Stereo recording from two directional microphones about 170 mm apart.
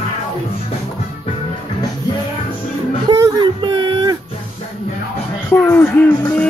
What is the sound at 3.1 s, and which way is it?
Music, 30° right (ahead or behind).